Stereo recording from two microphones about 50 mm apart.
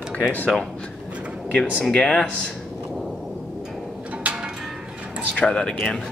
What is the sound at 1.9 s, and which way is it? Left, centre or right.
Speech, centre.